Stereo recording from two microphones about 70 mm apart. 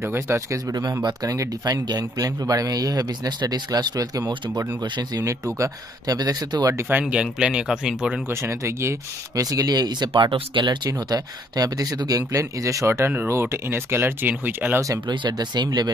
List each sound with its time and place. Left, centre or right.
0.0 s speech: right
0.5 s speech: right
4.8 s speech: right
5.6 s speech: right
6.9 s speech: right
7.2 s speech: centre
8.3 s speech: right
9.3 s speech: right
15.0 s speech: right